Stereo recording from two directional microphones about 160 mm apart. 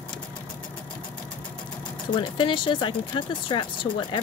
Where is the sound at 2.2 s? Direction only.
30° left (ahead or behind).